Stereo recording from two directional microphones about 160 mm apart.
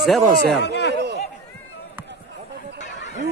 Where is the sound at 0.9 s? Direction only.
90° right.